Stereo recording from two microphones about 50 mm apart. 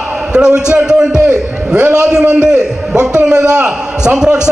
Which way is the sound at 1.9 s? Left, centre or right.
Centre.